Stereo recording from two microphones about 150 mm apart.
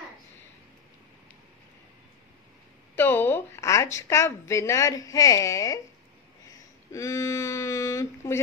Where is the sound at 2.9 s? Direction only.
15° left (ahead or behind).